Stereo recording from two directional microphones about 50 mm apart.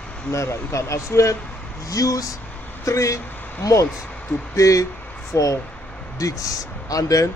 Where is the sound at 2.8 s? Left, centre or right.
Left.